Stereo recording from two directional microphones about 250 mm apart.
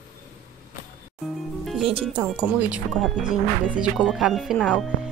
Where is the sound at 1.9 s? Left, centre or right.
Right.